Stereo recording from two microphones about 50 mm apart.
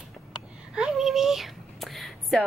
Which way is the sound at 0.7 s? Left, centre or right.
Centre.